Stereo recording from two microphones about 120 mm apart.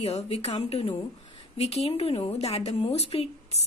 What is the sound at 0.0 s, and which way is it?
A woman's voice, 60° left (ahead or behind).